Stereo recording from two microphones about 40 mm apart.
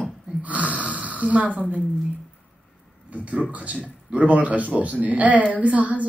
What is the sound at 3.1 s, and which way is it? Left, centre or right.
A man's voice, right.